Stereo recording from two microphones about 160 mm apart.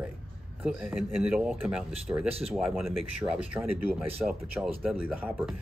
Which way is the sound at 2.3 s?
40° right (ahead or behind).